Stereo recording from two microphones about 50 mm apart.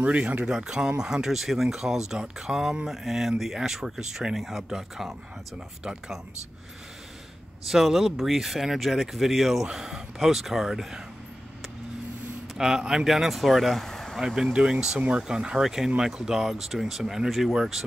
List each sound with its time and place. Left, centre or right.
0.0 s speech: right; by 5.1 s centre
7.6 s speech: centre
12.5 s speech: centre
14.2 s speech: centre
14.5 s speech: right